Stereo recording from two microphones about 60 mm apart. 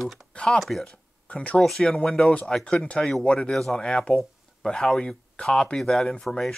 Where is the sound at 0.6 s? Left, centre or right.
Centre.